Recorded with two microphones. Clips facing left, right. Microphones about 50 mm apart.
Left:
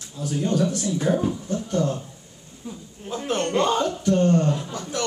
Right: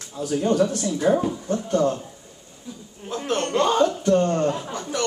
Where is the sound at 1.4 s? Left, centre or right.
Right.